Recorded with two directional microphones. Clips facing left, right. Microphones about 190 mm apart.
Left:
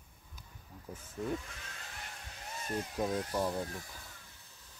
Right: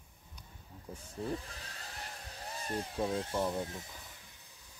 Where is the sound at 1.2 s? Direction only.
35° right (ahead or behind).